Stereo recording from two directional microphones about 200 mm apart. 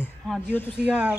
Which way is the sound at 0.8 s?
5° right (ahead or behind).